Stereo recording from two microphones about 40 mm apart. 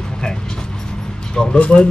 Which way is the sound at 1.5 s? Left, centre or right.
Left.